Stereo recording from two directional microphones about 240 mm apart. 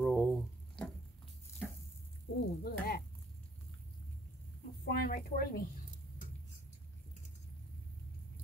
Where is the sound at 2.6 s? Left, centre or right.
Left.